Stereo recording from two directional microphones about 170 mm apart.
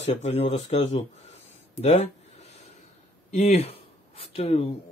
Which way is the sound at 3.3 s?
40° left (ahead or behind).